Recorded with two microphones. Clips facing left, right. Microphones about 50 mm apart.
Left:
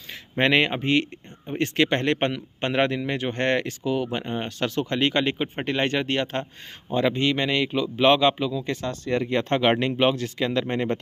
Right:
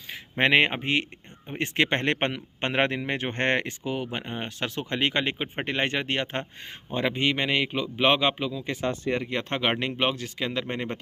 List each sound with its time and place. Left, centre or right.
0.4 s a man's voice: right
9.2 s speech: centre